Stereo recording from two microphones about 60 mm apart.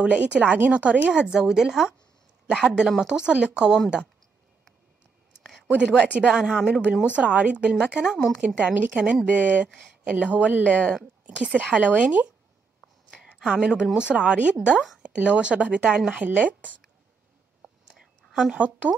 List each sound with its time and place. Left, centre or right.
0.0 s speech: right
3.0 s speech: centre
5.7 s speech: centre
8.4 s speech: centre
10.7 s speech: centre
11.2 s speech: right
13.5 s speech: centre
17.6 s whispering: centre
18.3 s speech: centre
18.6 s speech: right